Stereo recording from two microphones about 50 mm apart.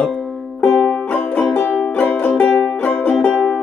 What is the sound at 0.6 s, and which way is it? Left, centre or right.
Music, left.